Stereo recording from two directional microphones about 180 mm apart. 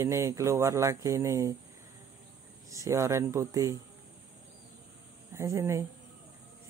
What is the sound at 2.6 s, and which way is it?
Speech, 15° right (ahead or behind).